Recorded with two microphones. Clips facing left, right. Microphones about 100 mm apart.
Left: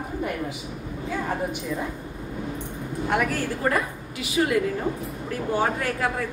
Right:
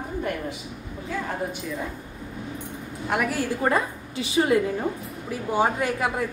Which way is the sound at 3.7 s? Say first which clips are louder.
Right 2 dB; 30° right (ahead or behind).